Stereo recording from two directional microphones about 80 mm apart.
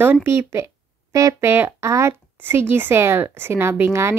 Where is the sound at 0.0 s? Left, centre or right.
Right.